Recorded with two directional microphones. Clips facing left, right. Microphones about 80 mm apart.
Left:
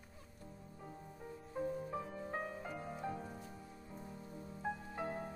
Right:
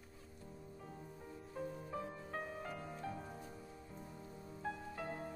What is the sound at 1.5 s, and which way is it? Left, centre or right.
Music, centre.